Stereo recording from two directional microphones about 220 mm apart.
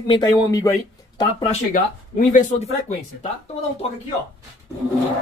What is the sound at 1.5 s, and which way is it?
Speech, 35° left (ahead or behind).